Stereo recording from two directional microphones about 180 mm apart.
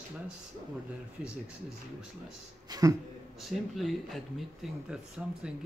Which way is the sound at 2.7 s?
20° right (ahead or behind).